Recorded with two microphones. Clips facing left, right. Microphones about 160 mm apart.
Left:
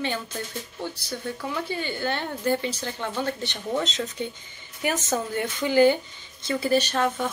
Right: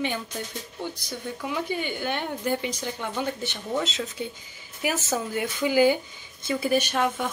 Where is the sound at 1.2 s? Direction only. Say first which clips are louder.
Right 1 dB; 10° right (ahead or behind).